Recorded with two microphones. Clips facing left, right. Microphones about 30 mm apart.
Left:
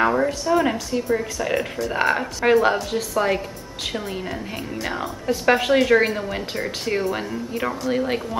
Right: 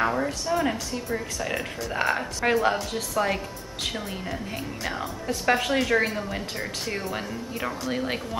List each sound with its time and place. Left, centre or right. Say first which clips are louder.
0.0 s speech: left 6 dB; centre